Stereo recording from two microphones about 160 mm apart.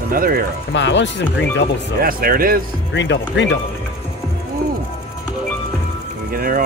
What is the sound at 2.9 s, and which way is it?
Speech, 90° left.